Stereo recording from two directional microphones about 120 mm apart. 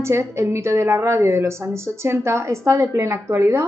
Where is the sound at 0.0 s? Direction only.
20° right (ahead or behind).